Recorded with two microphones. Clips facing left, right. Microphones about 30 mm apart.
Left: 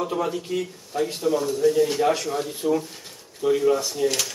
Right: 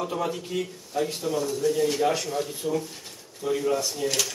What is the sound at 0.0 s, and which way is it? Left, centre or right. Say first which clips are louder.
Speech: left 3 dB; centre.